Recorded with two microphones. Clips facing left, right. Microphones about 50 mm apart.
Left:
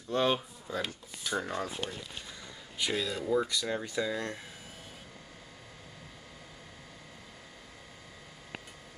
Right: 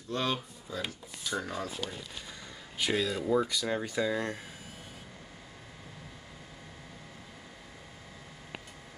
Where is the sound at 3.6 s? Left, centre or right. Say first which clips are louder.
Right 2 dB; centre.